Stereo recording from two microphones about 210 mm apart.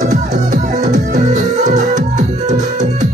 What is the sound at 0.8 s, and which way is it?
Music, 35° right (ahead or behind).